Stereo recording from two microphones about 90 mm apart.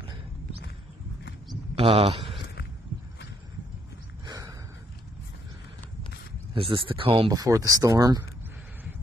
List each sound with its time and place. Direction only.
1.8 s speech: 90° right
6.5 s speech: 85° right
7.2 s speech: 45° right (ahead or behind)